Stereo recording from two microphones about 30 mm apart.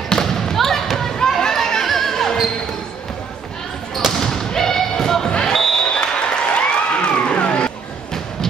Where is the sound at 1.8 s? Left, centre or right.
Centre.